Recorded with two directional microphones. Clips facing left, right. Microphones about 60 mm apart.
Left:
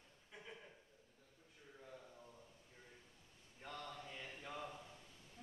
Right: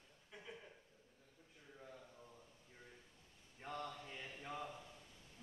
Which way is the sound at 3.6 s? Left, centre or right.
Centre.